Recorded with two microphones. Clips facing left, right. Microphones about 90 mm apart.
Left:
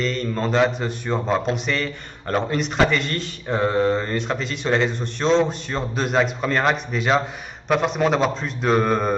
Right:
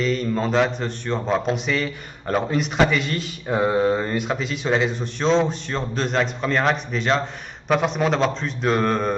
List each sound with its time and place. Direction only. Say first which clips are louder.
0.0 s a man's voice: right 2 dB; 5° right (ahead or behind)